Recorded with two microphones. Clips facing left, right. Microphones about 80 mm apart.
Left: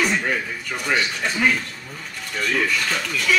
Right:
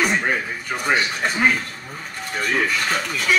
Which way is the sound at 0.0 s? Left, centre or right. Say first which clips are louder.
Right 1 dB; right.